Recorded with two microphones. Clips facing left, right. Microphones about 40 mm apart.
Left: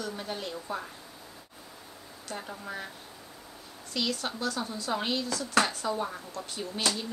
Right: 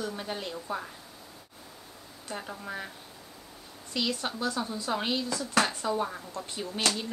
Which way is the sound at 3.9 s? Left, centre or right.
Centre.